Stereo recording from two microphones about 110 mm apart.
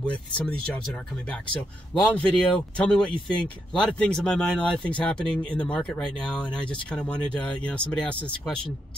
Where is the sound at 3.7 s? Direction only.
5° left (ahead or behind).